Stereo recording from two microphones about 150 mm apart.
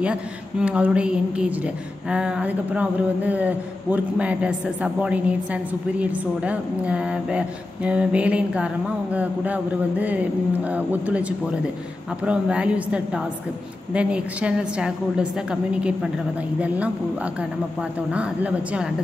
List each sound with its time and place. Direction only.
0.0 s speech: 5° right (ahead or behind)